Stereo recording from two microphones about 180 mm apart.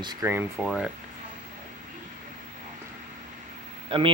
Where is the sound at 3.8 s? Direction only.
30° right (ahead or behind).